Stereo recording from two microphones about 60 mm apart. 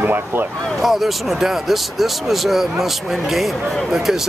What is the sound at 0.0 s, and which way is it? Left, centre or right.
Speech, right.